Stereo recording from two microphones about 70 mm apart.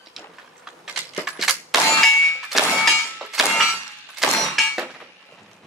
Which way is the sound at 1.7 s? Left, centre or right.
Centre.